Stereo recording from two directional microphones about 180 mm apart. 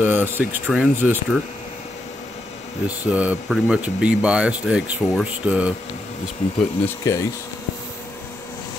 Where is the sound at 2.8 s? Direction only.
5° right (ahead or behind).